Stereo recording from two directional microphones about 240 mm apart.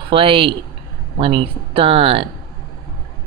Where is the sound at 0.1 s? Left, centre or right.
Right.